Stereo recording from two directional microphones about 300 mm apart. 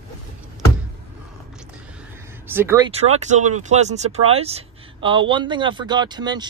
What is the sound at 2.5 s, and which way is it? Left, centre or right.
Speech, centre.